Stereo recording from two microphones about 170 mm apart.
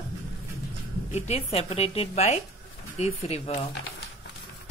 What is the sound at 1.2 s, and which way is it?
Speech, 35° left (ahead or behind).